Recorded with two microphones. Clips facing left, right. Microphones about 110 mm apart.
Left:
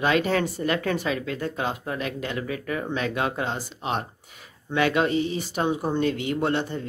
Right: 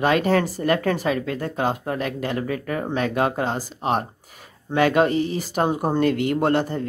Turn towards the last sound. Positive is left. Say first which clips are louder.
# right 5 dB
turn(degrees=-45)  # may be behind; listen again after turning